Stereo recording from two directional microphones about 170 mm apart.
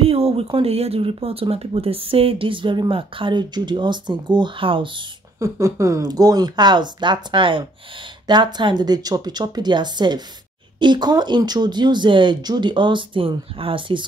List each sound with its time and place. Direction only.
0.0 s speech: 35° right (ahead or behind)
5.4 s speech: 20° right (ahead or behind)